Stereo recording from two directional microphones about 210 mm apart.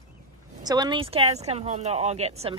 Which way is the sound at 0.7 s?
20° right (ahead or behind).